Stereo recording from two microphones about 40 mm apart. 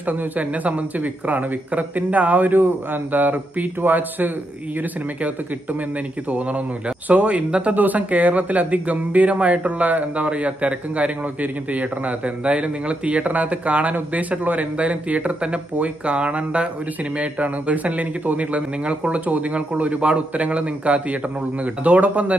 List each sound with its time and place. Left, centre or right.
0.0 s speech: right
6.3 s a man's voice: right